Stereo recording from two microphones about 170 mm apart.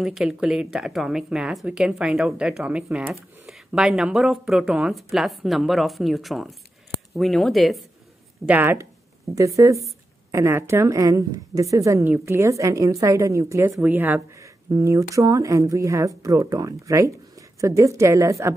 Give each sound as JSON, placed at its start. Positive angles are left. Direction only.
{"t": 0.0, "sound": "speech", "side_deg": -5}
{"t": 8.5, "sound": "a woman's voice", "side_deg": -10}